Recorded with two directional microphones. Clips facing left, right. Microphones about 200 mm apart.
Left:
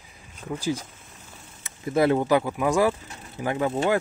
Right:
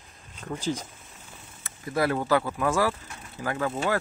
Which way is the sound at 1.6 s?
20° left (ahead or behind).